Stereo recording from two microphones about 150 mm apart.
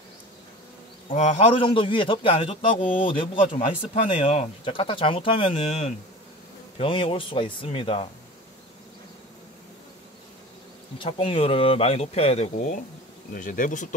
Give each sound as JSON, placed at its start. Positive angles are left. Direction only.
{"t": 1.0, "sound": "a man's voice", "side_deg": 45}
{"t": 6.8, "sound": "a man's voice", "side_deg": 35}
{"t": 11.0, "sound": "a man's voice", "side_deg": 40}
{"t": 13.3, "sound": "speech", "side_deg": 65}